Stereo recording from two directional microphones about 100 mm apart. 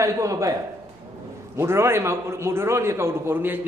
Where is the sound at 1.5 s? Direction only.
25° right (ahead or behind).